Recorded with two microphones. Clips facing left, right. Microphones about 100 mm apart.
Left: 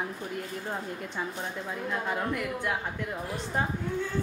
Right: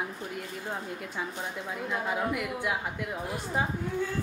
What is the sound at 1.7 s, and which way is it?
A woman's voice, 5° right (ahead or behind).